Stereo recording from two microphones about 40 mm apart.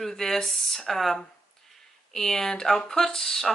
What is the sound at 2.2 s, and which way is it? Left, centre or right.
Speech, centre.